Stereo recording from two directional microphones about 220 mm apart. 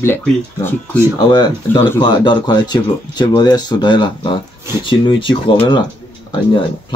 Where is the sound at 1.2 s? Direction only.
20° left (ahead or behind).